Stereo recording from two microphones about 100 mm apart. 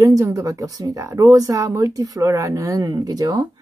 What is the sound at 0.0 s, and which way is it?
Speech, 30° right (ahead or behind).